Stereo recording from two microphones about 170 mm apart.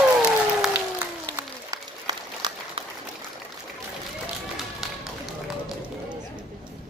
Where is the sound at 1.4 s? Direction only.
20° right (ahead or behind).